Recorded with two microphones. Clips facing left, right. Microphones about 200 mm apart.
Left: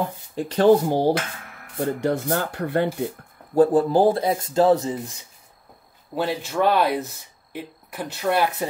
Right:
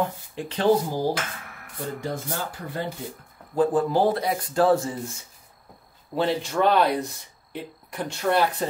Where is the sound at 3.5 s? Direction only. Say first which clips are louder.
Left 4 dB; 40° left (ahead or behind); by 5.1 s 20° left (ahead or behind).